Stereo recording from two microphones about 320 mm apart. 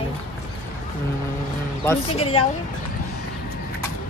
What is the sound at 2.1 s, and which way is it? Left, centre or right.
Speech, centre.